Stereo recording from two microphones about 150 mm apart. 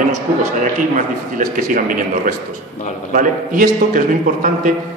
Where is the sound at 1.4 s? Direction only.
65° right (ahead or behind).